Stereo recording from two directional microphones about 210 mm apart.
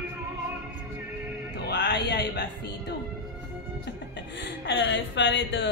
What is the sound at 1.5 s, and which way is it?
Music, 55° left (ahead or behind).